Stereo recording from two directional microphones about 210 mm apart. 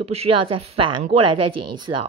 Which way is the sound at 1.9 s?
15° right (ahead or behind).